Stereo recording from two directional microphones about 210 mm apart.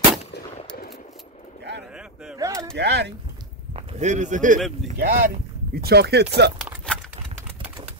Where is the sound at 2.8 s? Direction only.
55° right (ahead or behind).